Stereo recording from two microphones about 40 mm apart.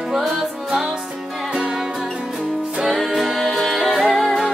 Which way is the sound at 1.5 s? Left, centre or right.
Right.